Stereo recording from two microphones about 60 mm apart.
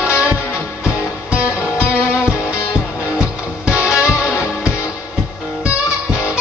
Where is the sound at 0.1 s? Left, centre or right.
Left.